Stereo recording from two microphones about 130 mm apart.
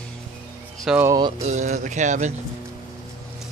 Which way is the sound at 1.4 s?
65° right (ahead or behind).